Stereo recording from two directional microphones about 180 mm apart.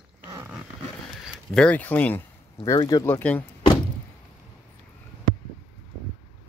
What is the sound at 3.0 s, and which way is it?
Speech, 10° left (ahead or behind).